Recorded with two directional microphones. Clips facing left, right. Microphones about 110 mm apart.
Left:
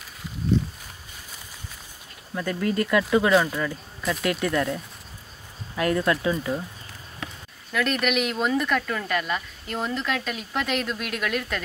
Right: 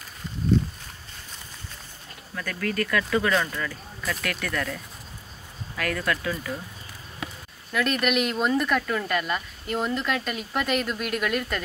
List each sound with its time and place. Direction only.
2.3 s speech: 20° left (ahead or behind)
3.3 s speech: 10° left (ahead or behind)
4.2 s speech: 25° left (ahead or behind)
7.7 s speech: centre (ahead or behind)